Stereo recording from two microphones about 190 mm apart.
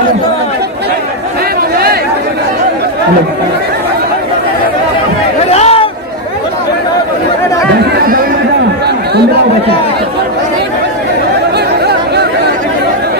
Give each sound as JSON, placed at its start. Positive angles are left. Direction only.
{"t": 5.5, "sound": "a sound", "side_deg": 35}
{"t": 7.8, "sound": "chatter", "side_deg": -55}
{"t": 11.8, "sound": "chatter", "side_deg": -60}